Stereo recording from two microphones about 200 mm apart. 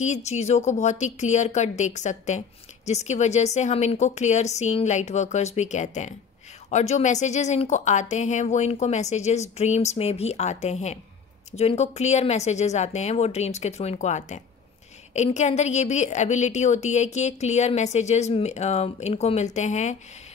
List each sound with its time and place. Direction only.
0.0 s a woman's voice: 35° left (ahead or behind)